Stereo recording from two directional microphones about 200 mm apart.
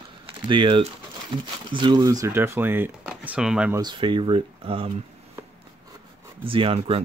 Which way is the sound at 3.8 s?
25° right (ahead or behind).